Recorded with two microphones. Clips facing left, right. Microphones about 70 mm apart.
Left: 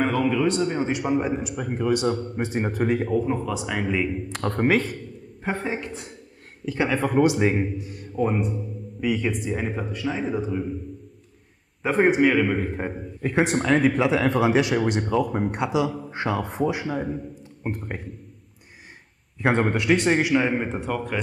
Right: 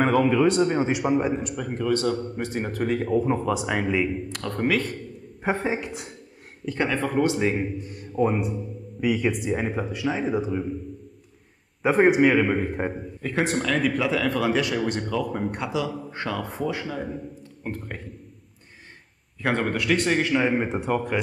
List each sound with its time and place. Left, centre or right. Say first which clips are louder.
0.0 s a man's voice: right 2 dB; right; by 3.1 s left
3.3 s speech: right 3 dB; centre
3.8 s speech: right 1 dB; centre
4.3 s a man's voice: left 3 dB; left
5.4 s speech: right 2 dB; centre
6.6 s speech: left 1 dB; centre
7.0 s speech: left 4 dB; centre
7.6 s a man's voice: left 1 dB; centre
11.8 s speech: right 1 dB; centre
13.2 s a man's voice: left 3 dB; centre
19.4 s a man's voice: left 3 dB; left
20.3 s speech: even; centre
20.6 s speech: right 2 dB; centre